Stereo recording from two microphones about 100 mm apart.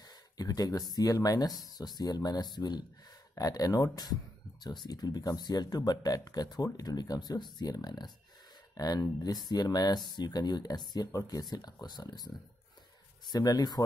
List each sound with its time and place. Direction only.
0.4 s speech: 40° left (ahead or behind)
13.3 s speech: 40° left (ahead or behind)